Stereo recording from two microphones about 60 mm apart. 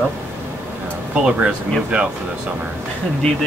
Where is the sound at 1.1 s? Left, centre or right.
Centre.